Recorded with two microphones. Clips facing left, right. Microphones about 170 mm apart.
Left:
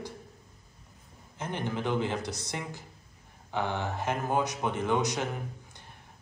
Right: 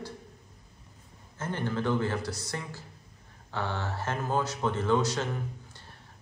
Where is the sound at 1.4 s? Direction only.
15° left (ahead or behind).